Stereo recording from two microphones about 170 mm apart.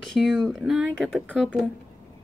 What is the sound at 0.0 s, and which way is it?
Speech, 5° left (ahead or behind).